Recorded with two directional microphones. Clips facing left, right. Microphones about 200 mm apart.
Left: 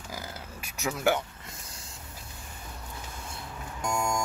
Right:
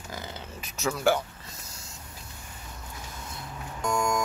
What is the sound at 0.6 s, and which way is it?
Speech, 15° left (ahead or behind).